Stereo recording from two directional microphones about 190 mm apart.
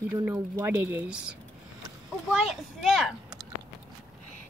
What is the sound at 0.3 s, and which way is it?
Speech, 10° right (ahead or behind).